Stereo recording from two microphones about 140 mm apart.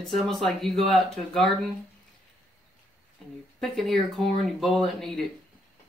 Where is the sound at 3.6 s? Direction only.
Centre (ahead or behind).